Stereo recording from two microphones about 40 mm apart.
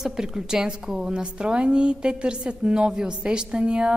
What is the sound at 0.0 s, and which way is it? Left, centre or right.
A woman's voice, centre.